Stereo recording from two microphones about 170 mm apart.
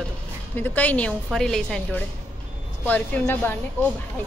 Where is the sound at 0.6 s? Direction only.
10° left (ahead or behind).